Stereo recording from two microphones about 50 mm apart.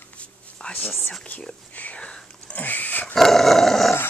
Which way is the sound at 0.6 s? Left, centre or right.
Left.